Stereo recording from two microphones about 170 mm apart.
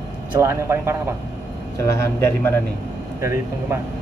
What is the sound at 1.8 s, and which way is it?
Speech, 15° left (ahead or behind).